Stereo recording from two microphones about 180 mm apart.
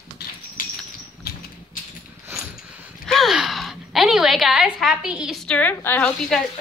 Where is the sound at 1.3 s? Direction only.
60° left (ahead or behind).